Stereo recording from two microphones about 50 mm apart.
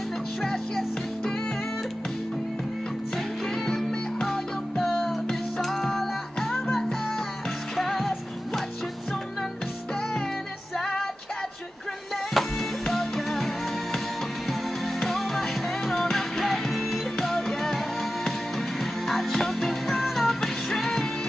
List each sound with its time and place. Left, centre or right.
0.4 s music: centre
3.6 s music: centre
10.8 s music: centre
12.4 s music: centre
15.0 s music: centre